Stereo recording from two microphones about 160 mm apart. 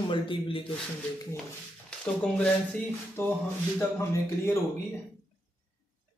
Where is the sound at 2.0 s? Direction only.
5° left (ahead or behind).